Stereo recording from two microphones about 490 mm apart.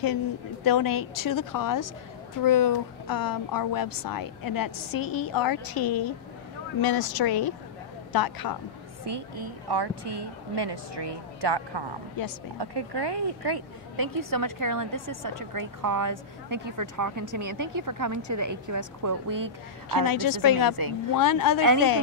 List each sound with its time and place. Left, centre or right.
0.7 s a woman's voice: left
9.0 s a woman's voice: right
12.2 s a woman's voice: left
12.5 s a woman's voice: right
20.0 s a woman's voice: left